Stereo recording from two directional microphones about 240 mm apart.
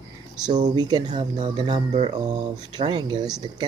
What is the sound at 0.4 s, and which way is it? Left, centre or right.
Speech, centre.